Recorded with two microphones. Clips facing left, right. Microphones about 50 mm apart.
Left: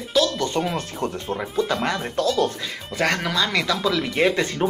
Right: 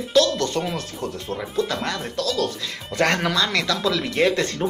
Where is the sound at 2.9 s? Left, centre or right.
Centre.